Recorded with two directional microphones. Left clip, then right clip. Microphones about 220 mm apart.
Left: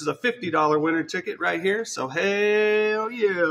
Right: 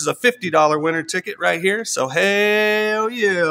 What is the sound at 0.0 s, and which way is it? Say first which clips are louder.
Speech: right 7 dB; 60° right (ahead or behind).